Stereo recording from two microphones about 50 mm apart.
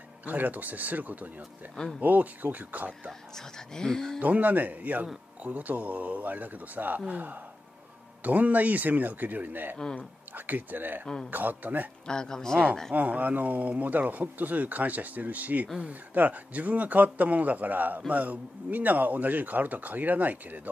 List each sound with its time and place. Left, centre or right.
0.2 s speech: right
3.1 s speech: centre
4.2 s speech: right
12.1 s speech: centre
12.9 s speech: right